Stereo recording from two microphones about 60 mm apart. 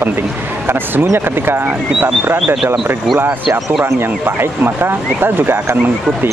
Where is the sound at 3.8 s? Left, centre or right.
Right.